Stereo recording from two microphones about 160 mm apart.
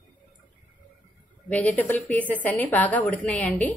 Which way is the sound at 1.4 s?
10° left (ahead or behind).